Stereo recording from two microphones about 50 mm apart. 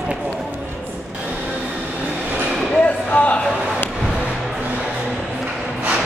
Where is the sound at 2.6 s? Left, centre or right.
Centre.